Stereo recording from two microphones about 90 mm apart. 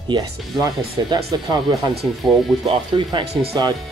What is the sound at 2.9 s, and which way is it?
Speech, 60° right (ahead or behind).